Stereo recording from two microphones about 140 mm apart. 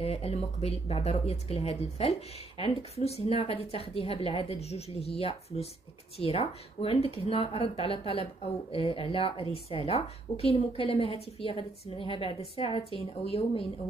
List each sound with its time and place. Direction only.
0.0 s a woman's voice: 45° left (ahead or behind)